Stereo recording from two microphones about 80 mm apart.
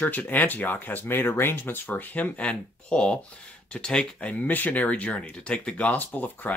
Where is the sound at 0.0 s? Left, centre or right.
Left.